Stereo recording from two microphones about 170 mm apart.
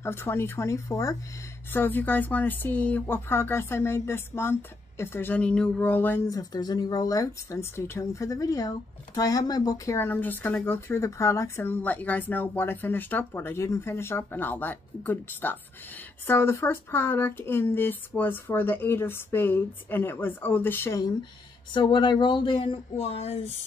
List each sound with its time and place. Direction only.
0.0 s speech: 15° left (ahead or behind)
21.7 s speech: 25° left (ahead or behind)